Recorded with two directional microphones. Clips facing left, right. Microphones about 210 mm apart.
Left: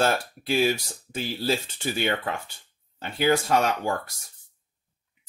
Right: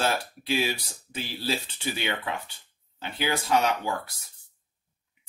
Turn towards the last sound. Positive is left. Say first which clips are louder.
# left 1 dB
turn(degrees=50)  # may be behind; listen again after turning